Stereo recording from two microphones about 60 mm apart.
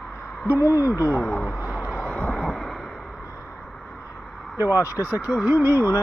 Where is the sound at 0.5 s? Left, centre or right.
Left.